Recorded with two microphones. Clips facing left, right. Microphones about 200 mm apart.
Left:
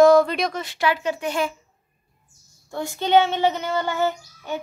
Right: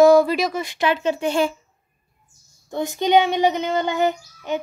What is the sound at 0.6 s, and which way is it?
Speech, 20° right (ahead or behind).